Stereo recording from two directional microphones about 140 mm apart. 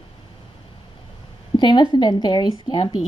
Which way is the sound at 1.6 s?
30° left (ahead or behind).